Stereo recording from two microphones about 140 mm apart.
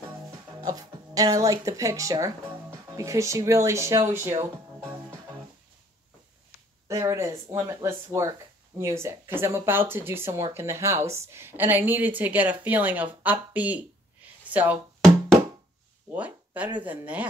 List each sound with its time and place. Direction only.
0.7 s speech: 25° right (ahead or behind)
6.9 s a woman's voice: 20° right (ahead or behind)
16.1 s a woman's voice: 10° right (ahead or behind)